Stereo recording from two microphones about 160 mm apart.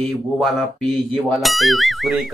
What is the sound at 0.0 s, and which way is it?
Speech, centre (ahead or behind).